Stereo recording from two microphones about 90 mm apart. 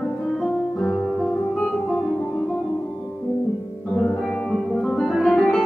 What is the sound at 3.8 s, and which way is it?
Music, 10° left (ahead or behind).